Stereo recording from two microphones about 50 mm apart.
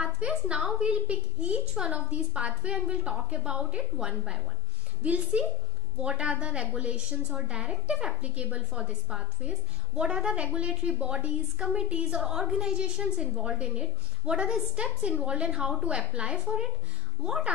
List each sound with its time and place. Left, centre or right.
0.0 s a woman's voice: centre